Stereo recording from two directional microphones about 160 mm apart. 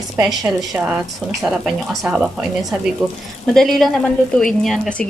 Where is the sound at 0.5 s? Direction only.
10° right (ahead or behind).